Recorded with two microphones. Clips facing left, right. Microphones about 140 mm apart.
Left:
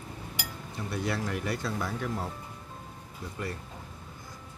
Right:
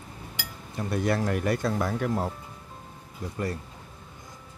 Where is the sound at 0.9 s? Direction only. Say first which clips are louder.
Right 6 dB; 50° right (ahead or behind).